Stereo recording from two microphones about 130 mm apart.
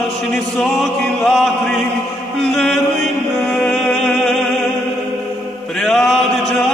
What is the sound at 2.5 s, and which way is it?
Chant, centre (ahead or behind).